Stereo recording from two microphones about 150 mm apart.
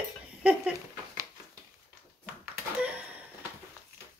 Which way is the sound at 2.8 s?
10° right (ahead or behind).